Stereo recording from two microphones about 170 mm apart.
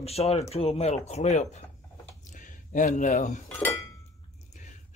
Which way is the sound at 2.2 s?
50° left (ahead or behind).